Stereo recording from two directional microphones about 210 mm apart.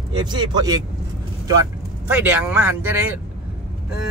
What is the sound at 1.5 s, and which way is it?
Vehicle, 15° right (ahead or behind).